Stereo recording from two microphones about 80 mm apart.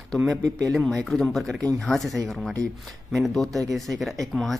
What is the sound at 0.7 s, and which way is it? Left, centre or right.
Speech, centre.